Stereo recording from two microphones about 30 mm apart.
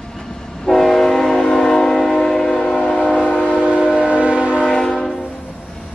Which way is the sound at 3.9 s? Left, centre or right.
Right.